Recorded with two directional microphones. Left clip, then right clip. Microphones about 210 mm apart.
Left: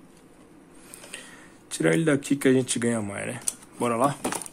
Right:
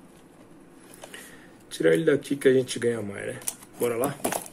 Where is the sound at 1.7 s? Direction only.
50° left (ahead or behind).